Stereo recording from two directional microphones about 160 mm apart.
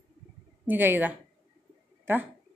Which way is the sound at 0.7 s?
10° right (ahead or behind).